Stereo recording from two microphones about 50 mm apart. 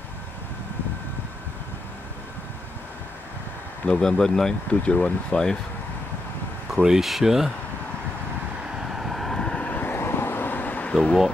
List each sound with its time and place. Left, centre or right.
3.8 s speech: centre
4.6 s speech: left
5.3 s speech: centre
6.8 s speech: centre
8.7 s vehicle: centre
9.5 s vehicle: left
9.9 s vehicle: left